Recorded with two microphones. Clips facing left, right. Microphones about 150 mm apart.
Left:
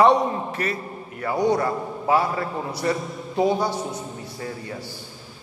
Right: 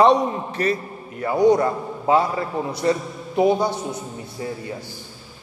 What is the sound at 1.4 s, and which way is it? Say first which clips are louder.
A man's voice: right 5 dB; 20° right (ahead or behind).